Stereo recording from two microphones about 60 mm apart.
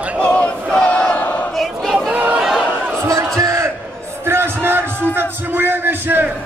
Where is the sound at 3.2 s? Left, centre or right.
Right.